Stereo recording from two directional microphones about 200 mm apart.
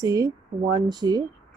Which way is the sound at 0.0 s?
20° right (ahead or behind).